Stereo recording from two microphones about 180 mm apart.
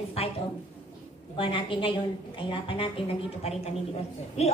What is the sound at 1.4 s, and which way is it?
A woman's voice, 30° left (ahead or behind).